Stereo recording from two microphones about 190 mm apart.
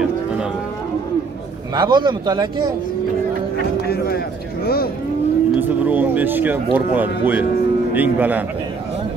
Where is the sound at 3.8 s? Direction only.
55° left (ahead or behind).